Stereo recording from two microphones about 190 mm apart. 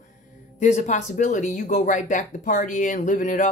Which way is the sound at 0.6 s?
40° left (ahead or behind).